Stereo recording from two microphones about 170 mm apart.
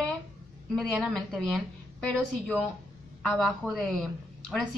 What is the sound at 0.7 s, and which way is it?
Speech, centre (ahead or behind).